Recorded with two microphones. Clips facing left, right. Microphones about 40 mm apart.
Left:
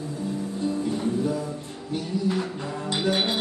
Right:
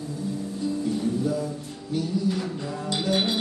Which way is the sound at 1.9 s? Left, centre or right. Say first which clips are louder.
Even; centre.